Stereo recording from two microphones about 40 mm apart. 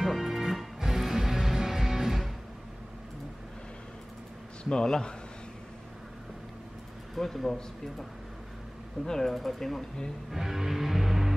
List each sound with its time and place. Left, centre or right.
0.0 s music: centre
4.6 s a man's voice: centre
7.2 s speech: centre
9.0 s speech: centre
9.3 s speech: centre
10.3 s music: centre